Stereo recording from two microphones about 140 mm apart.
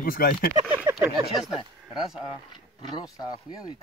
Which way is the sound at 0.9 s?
20° right (ahead or behind).